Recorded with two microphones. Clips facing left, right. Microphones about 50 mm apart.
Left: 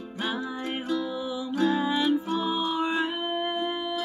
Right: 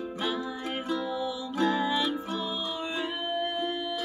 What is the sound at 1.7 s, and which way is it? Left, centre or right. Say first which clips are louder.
Music: left 3 dB; centre.